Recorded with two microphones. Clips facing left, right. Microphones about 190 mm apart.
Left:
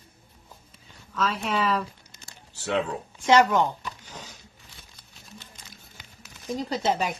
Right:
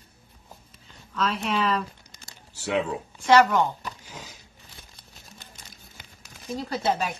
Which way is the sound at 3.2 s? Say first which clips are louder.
Right 1 dB; 15° left (ahead or behind).